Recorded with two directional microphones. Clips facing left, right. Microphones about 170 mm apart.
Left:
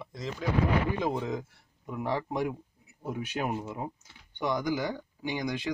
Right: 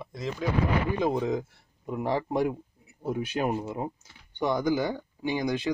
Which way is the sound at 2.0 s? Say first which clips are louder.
Right 4 dB; 35° right (ahead or behind).